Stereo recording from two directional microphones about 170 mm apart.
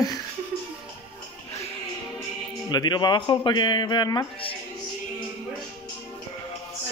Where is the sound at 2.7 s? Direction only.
25° left (ahead or behind).